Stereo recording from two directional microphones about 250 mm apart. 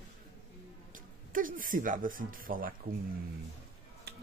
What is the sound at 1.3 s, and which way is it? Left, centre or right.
Speech, right.